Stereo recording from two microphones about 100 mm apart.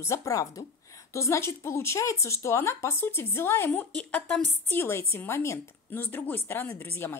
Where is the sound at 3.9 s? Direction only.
10° left (ahead or behind).